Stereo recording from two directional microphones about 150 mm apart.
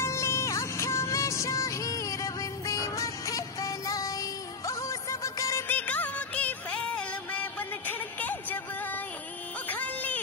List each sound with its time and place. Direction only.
0.0 s music: 20° left (ahead or behind)
5.8 s music: 10° left (ahead or behind)